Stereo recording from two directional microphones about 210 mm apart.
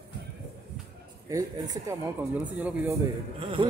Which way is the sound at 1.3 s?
15° right (ahead or behind).